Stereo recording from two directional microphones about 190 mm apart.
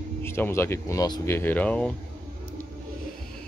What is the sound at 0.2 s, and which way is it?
Speech, 10° left (ahead or behind).